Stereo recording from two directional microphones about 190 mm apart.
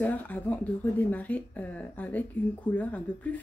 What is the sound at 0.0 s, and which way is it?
Speech, 10° left (ahead or behind).